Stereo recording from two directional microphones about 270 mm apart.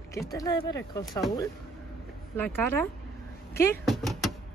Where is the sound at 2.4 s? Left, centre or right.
Centre.